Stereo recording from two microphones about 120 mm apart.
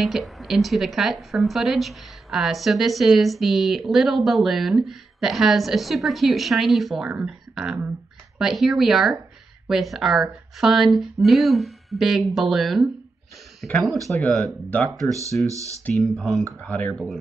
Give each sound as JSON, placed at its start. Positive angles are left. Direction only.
{"t": 0.0, "sound": "speech", "side_deg": 0}
{"t": 15.4, "sound": "speech", "side_deg": -25}
{"t": 15.9, "sound": "speech", "side_deg": 0}
{"t": 16.9, "sound": "speech", "side_deg": 0}